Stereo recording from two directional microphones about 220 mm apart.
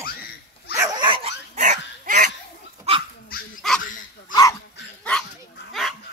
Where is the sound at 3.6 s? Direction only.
Centre (ahead or behind).